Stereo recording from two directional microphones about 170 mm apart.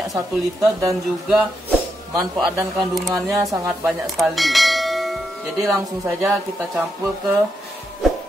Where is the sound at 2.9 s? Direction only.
Centre (ahead or behind).